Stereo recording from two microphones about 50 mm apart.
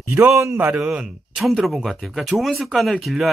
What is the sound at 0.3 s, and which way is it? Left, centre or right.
Speech, right.